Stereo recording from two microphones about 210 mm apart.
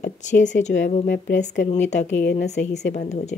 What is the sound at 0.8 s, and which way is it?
Speech, 40° left (ahead or behind).